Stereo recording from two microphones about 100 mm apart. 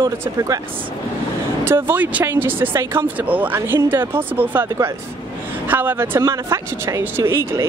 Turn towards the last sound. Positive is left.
turn(degrees=-25)  # may be behind; listen again after turning